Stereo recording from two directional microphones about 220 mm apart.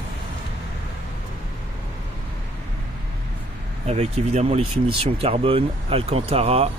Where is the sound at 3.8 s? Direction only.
30° right (ahead or behind).